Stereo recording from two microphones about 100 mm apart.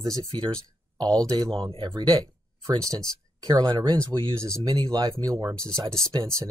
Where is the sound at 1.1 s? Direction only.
35° right (ahead or behind).